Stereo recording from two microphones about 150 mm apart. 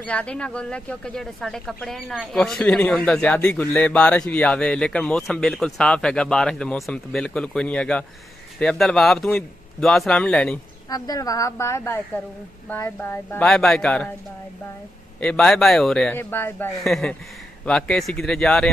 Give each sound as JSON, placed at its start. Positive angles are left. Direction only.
{"t": 0.0, "sound": "a man's voice", "side_deg": 10}
{"t": 10.9, "sound": "a woman's voice", "side_deg": 25}
{"t": 13.5, "sound": "a man's voice", "side_deg": 5}
{"t": 15.1, "sound": "a man's voice", "side_deg": 5}
{"t": 16.8, "sound": "a man's voice", "side_deg": 0}